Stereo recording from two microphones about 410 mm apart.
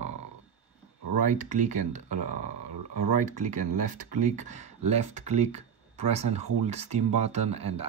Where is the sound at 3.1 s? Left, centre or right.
Centre.